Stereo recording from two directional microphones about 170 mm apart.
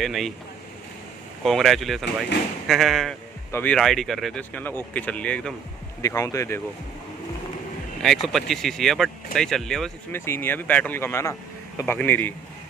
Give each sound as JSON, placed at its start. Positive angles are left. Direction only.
{"t": 0.0, "sound": "speech", "side_deg": 0}
{"t": 1.4, "sound": "speech", "side_deg": 0}
{"t": 6.0, "sound": "speech", "side_deg": 20}
{"t": 8.0, "sound": "speech", "side_deg": 0}
{"t": 10.1, "sound": "speech", "side_deg": 15}